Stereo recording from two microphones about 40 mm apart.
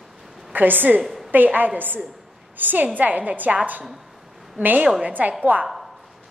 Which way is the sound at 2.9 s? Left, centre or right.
Right.